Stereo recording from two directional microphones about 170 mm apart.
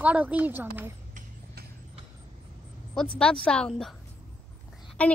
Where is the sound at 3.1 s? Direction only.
5° left (ahead or behind).